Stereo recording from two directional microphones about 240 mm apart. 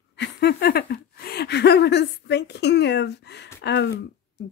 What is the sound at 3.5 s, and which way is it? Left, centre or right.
Speech, left.